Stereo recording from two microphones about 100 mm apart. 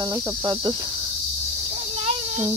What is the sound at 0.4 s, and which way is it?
Speech, 50° right (ahead or behind).